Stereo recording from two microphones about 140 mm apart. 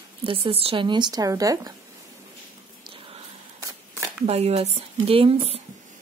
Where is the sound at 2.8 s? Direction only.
40° right (ahead or behind).